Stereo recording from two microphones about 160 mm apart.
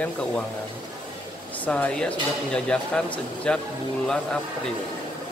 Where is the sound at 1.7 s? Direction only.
10° left (ahead or behind).